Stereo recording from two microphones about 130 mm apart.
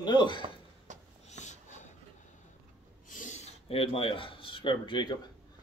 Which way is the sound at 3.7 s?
45° left (ahead or behind).